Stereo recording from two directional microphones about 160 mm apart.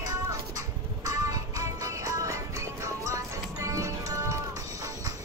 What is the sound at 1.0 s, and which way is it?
Music, 20° right (ahead or behind).